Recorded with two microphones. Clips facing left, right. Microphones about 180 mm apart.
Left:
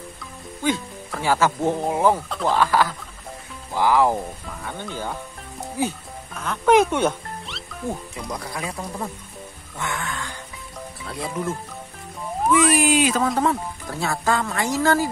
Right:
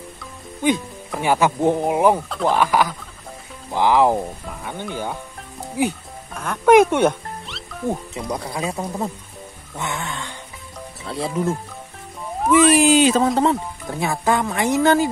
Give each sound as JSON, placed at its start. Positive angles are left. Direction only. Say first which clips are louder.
{"t": 0.6, "sound": "speech", "louder": "right 4 dB", "side_deg": -15}
{"t": 7.9, "sound": "speech", "louder": "right 5 dB", "side_deg": -20}